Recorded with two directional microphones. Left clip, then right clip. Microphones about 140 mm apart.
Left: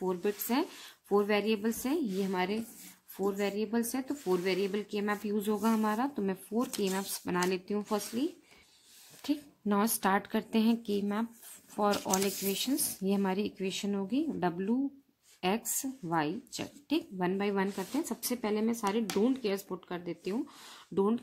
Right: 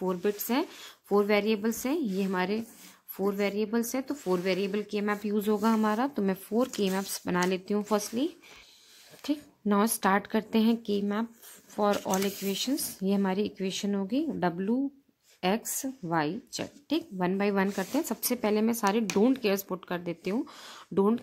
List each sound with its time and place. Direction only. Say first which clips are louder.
0.0 s a woman's voice: right 3 dB; 30° right (ahead or behind)
9.2 s a woman's voice: right 2 dB; 20° right (ahead or behind)